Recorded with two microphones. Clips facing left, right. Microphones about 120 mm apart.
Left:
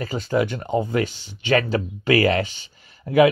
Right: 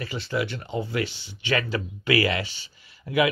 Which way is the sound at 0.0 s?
40° left (ahead or behind).